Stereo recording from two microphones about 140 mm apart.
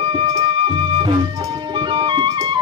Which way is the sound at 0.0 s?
35° right (ahead or behind).